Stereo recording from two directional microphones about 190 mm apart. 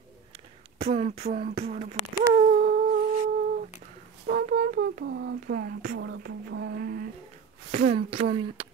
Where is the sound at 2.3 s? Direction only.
45° right (ahead or behind).